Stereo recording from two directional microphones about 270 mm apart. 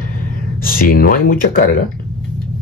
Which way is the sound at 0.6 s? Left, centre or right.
Left.